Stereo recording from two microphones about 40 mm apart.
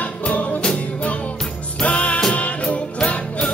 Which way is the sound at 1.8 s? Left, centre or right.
Left.